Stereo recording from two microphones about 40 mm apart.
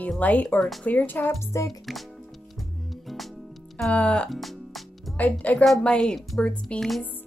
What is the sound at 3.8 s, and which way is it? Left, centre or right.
Speech, left.